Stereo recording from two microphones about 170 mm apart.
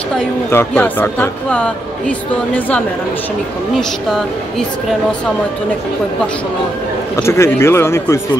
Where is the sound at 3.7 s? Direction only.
Centre (ahead or behind).